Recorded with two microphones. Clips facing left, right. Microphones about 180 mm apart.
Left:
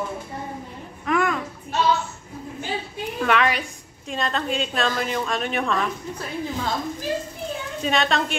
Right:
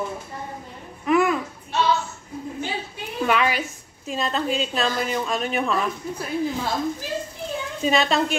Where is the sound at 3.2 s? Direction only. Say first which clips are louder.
Even; centre (ahead or behind).